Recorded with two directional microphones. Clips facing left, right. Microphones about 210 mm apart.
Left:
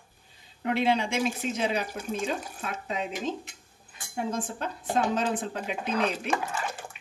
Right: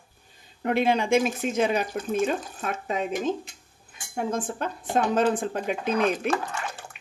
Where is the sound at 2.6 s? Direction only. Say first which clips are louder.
Right 4 dB; 50° right (ahead or behind).